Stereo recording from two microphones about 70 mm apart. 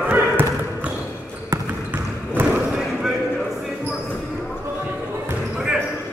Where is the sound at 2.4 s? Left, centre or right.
Right.